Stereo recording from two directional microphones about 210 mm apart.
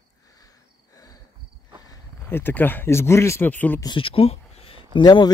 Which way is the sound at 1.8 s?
15° left (ahead or behind).